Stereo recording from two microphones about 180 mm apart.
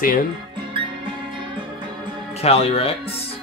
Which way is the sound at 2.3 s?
35° left (ahead or behind).